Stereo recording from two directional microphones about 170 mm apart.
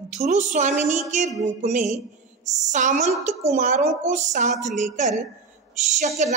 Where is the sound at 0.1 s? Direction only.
45° right (ahead or behind).